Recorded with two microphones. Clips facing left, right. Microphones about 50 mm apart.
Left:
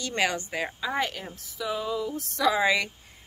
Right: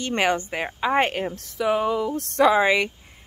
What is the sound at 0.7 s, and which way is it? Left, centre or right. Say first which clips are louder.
A woman's voice: right 11 dB; right.